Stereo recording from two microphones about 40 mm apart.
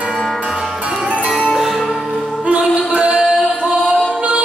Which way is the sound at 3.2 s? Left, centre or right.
Right.